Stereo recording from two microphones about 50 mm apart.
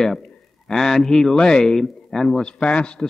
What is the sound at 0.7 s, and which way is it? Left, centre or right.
A man's voice, centre.